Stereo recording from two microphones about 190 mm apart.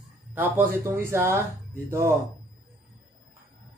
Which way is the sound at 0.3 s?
10° right (ahead or behind).